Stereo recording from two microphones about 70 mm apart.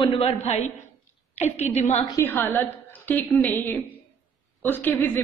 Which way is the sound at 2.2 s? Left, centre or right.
Left.